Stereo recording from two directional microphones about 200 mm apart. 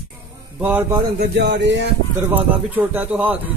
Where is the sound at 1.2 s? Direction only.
55° right (ahead or behind).